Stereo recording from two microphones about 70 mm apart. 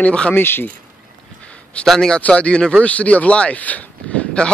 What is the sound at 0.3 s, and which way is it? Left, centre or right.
Speech, left.